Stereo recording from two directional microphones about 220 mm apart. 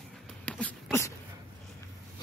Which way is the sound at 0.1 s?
5° left (ahead or behind).